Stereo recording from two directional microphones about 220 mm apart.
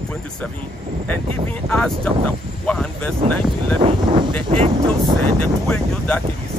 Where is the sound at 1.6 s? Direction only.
5° left (ahead or behind).